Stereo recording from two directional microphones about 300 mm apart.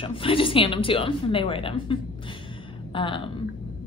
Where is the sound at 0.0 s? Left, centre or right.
Centre.